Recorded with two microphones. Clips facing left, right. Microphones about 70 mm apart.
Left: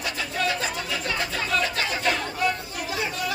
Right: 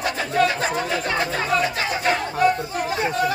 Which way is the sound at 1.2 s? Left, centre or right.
Right.